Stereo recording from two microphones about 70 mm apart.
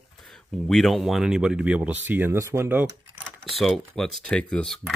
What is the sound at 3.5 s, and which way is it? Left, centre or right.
Speech, centre.